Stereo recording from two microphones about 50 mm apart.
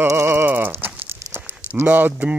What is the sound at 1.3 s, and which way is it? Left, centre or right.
Speech, right.